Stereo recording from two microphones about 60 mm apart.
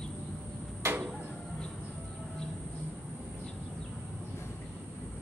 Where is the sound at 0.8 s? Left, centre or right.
Right.